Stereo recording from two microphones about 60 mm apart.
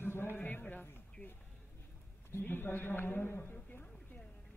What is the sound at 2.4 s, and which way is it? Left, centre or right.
A man's voice, left.